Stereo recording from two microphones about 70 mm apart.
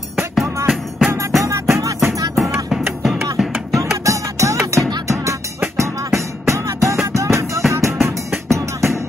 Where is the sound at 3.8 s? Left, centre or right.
Right.